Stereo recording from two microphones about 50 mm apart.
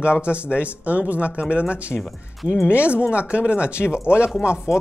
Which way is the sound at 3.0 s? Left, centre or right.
Left.